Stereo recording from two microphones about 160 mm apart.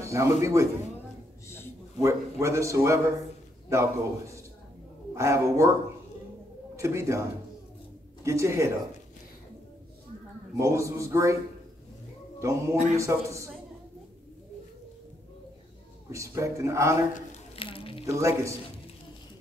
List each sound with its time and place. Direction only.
0.0 s a man's voice: 20° right (ahead or behind)
2.0 s a man's voice: 20° right (ahead or behind)
6.8 s a man's voice: 20° right (ahead or behind)
10.6 s a man's voice: 20° right (ahead or behind)
12.4 s a man's voice: 20° right (ahead or behind)
16.1 s a man's voice: 20° right (ahead or behind)
17.6 s squish: 35° left (ahead or behind)
18.0 s a man's voice: 20° right (ahead or behind)